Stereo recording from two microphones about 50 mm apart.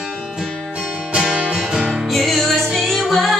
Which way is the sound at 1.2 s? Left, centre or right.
Centre.